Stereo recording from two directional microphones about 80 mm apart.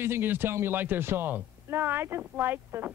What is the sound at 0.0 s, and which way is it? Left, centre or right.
Speech, right.